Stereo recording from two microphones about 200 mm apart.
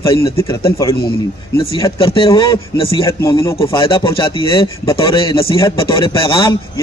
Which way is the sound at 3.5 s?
25° left (ahead or behind).